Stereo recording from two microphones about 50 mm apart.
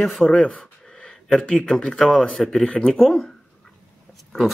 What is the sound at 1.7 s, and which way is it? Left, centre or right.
Speech, centre.